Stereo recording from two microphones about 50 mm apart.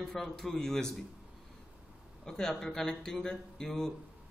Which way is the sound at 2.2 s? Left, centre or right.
Centre.